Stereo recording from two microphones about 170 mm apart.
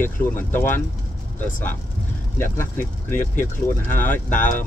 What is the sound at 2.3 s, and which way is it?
Speech, 10° left (ahead or behind).